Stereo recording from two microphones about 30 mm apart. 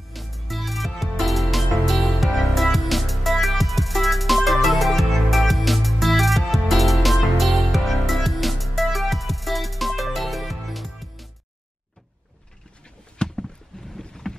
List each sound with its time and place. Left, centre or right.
0.1 s music: centre
13.2 s a sound: left
13.9 s boat: centre